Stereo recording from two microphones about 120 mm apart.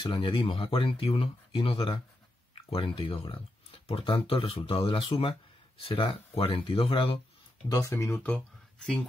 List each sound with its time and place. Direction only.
0.0 s speech: 50° left (ahead or behind)
7.6 s speech: 30° left (ahead or behind)
7.9 s speech: 20° left (ahead or behind)